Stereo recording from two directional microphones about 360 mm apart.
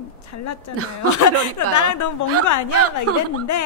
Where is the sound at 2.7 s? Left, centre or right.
Right.